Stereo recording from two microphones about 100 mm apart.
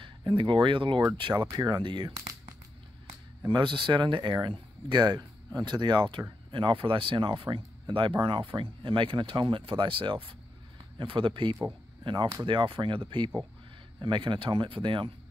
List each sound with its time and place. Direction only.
0.0 s speech: 55° right (ahead or behind)
1.3 s speech: 45° right (ahead or behind)
3.4 s speech: 55° right (ahead or behind)